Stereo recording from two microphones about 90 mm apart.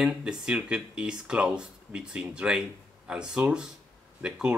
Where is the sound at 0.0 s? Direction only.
10° right (ahead or behind).